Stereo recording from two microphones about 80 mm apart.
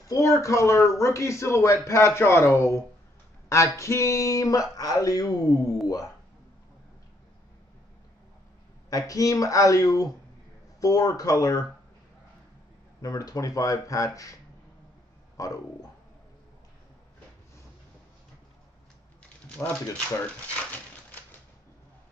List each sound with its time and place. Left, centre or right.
0.0 s a man's voice: left
8.9 s speech: left
13.0 s speech: left
20.7 s a sound: left